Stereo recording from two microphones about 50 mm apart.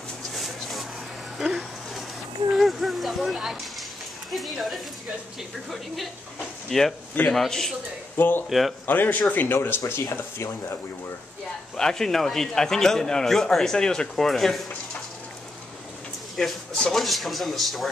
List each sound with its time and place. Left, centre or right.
0.3 s a sound: centre
4.3 s speech: centre
6.7 s a man's voice: centre
8.2 s speech: left
8.5 s speech: centre
8.8 s speech: left
9.8 s speech: left
11.7 s a man's voice: centre
14.1 s speech: centre
16.3 s speech: centre